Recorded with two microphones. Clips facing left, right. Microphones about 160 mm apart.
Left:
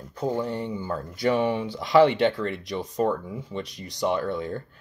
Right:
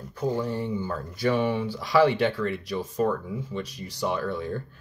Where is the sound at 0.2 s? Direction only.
20° left (ahead or behind).